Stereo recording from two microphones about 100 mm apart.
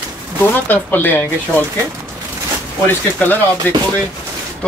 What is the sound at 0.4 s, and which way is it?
Speech, 20° left (ahead or behind).